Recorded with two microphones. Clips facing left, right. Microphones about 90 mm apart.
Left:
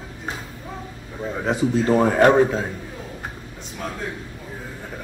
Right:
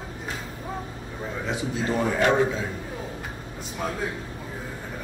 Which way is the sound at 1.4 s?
45° left (ahead or behind).